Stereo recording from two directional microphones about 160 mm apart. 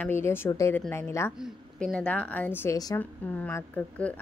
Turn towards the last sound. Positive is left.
turn(degrees=10)  # may be behind; listen again after turning